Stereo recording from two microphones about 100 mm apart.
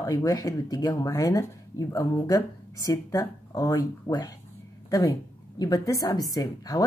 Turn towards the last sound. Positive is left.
turn(degrees=40)  # may be behind; listen again after turning